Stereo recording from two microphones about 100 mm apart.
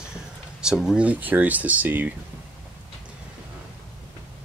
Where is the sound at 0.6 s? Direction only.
5° right (ahead or behind).